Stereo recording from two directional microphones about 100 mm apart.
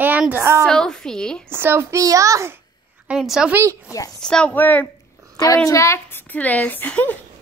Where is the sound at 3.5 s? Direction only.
20° right (ahead or behind).